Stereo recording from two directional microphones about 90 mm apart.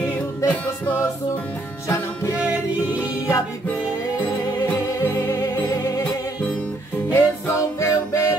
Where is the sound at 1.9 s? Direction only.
35° left (ahead or behind).